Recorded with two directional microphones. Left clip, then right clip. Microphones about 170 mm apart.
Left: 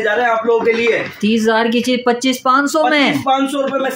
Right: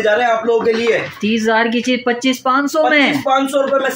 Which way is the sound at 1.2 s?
15° left (ahead or behind).